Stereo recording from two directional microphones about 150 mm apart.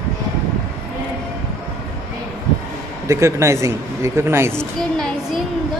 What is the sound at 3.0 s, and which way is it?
A man's voice, 20° right (ahead or behind).